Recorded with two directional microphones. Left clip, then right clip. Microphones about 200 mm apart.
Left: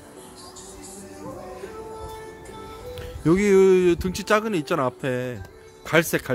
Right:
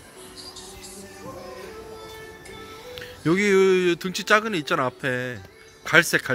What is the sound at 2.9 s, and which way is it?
Speech, 15° left (ahead or behind).